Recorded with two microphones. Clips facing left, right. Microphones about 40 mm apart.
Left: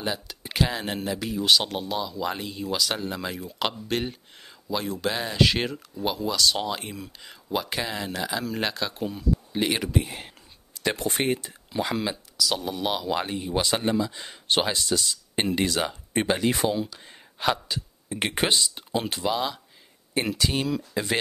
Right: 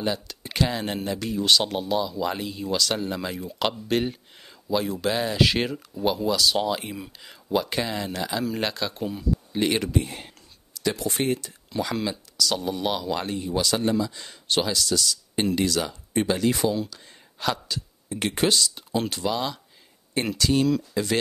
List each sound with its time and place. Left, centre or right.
0.0 s speech: centre
10.7 s speech: left
11.2 s speech: left
11.7 s speech: centre
13.5 s speech: left